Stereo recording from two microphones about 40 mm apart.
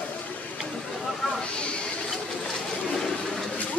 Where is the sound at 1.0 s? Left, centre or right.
Centre.